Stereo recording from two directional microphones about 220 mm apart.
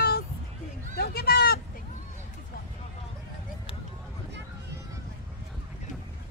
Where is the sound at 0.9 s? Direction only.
45° left (ahead or behind).